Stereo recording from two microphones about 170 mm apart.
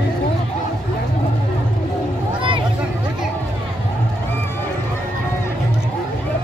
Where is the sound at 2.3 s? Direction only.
30° right (ahead or behind).